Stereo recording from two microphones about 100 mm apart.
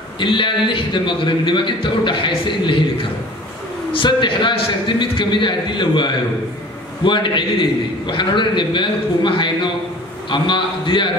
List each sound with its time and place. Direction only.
0.2 s a man's voice: 55° left (ahead or behind)
3.9 s a man's voice: 55° left (ahead or behind)